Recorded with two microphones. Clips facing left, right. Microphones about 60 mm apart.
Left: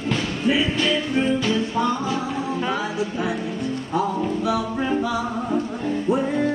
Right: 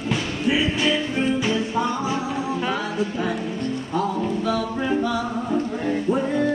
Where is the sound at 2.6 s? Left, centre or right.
Centre.